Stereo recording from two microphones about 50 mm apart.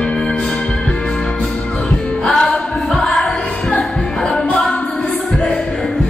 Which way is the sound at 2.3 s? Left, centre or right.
Centre.